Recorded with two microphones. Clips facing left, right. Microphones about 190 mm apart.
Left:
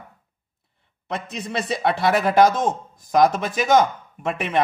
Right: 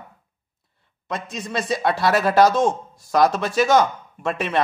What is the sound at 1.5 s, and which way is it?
A man's voice, 25° left (ahead or behind).